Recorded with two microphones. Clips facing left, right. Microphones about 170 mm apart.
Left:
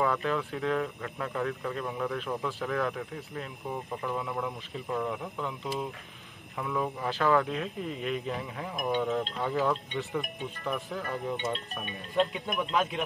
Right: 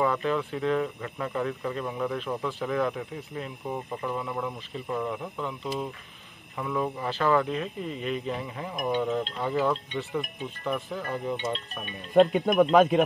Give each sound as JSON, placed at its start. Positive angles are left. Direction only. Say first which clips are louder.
{"t": 0.0, "sound": "speech", "louder": "right 3 dB", "side_deg": 0}
{"t": 6.6, "sound": "speech", "louder": "right 2 dB", "side_deg": 0}
{"t": 12.1, "sound": "speech", "louder": "right 9 dB", "side_deg": -55}